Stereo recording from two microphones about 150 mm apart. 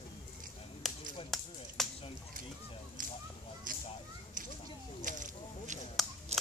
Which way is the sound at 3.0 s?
65° right (ahead or behind).